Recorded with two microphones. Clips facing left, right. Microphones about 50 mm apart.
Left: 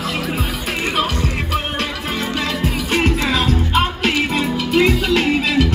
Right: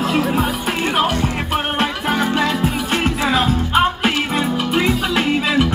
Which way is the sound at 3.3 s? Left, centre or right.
Centre.